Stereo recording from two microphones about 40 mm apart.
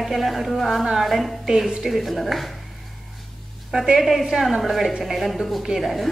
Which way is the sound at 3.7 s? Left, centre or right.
Centre.